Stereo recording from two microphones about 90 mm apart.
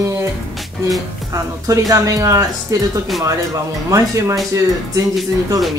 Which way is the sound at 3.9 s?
35° right (ahead or behind).